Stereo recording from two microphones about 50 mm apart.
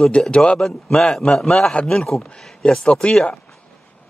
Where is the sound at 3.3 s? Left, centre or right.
Centre.